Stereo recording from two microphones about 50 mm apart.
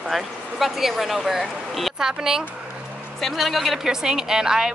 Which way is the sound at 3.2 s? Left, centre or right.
Centre.